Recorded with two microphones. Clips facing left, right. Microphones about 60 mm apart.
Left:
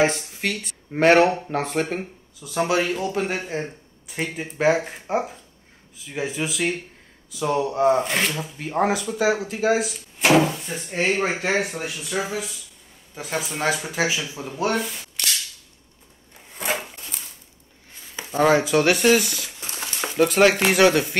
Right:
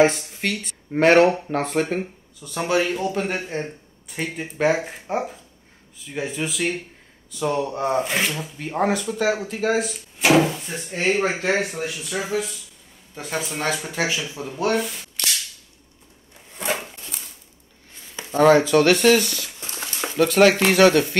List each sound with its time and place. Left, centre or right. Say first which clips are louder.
0.0 s speech: right 3 dB; centre
16.7 s a sound: even; centre
18.1 s speech: right 3 dB; centre